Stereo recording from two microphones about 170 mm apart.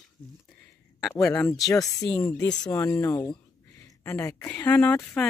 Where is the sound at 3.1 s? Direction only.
25° left (ahead or behind); by 5.3 s 10° left (ahead or behind).